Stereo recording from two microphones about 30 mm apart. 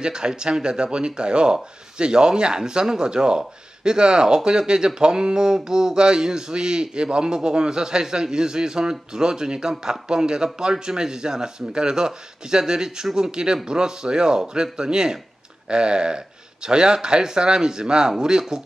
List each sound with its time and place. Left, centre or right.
0.0 s a man's voice: right